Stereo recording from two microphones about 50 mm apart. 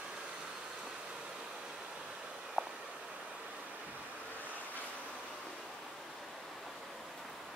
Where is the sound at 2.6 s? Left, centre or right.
Left.